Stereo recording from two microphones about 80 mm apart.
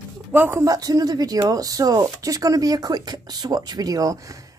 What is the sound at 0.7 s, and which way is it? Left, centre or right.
Speech, right.